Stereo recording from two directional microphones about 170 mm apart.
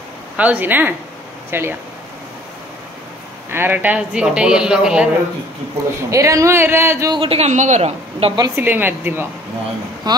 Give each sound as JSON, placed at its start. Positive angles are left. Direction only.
{"t": 0.4, "sound": "a man's voice", "side_deg": -10}
{"t": 3.4, "sound": "a man's voice", "side_deg": -10}
{"t": 6.0, "sound": "a man's voice", "side_deg": -20}
{"t": 7.2, "sound": "a woman's voice", "side_deg": -35}
{"t": 8.4, "sound": "a man's voice", "side_deg": -15}
{"t": 10.1, "sound": "speech", "side_deg": -25}